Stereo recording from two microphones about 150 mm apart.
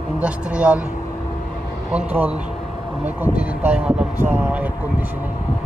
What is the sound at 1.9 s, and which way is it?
Speech, 10° right (ahead or behind).